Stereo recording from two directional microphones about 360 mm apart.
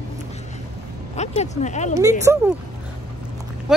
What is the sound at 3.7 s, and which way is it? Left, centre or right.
Speech, centre.